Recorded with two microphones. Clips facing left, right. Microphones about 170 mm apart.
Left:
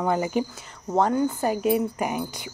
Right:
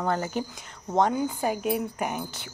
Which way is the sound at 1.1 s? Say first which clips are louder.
Left 4 dB; 5° right (ahead or behind).